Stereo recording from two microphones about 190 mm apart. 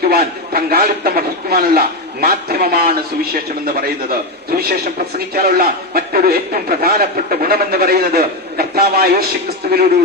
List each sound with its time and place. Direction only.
0.1 s a man's voice: 55° right (ahead or behind)
5.3 s a man's voice: 50° right (ahead or behind)